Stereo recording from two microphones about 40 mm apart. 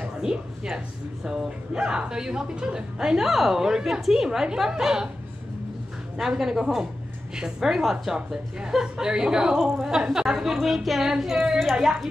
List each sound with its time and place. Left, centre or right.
0.2 s speech: centre
3.3 s speech: centre
6.1 s a woman's voice: centre